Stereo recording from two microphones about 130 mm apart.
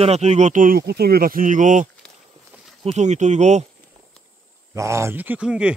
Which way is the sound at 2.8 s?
60° right (ahead or behind).